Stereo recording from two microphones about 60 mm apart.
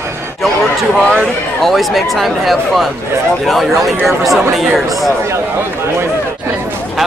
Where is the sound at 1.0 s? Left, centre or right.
Centre.